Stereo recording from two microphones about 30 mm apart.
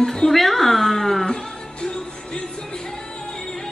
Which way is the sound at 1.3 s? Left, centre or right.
Left.